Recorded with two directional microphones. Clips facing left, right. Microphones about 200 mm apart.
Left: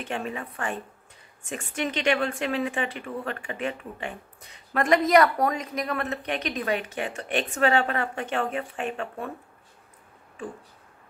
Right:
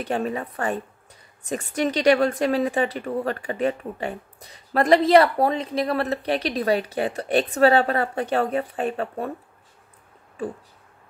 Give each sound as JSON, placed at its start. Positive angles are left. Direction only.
{"t": 0.0, "sound": "a woman's voice", "side_deg": -40}